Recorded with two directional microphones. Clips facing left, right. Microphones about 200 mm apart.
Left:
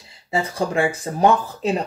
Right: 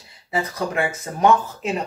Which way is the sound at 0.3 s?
30° left (ahead or behind).